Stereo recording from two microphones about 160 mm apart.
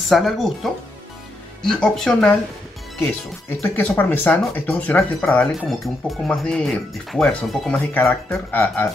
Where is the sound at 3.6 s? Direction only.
10° left (ahead or behind).